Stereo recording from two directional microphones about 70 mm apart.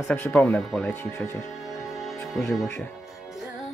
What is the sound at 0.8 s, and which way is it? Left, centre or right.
Speech, left.